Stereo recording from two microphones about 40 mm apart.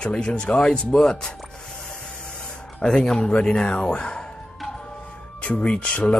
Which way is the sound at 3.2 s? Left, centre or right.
Left.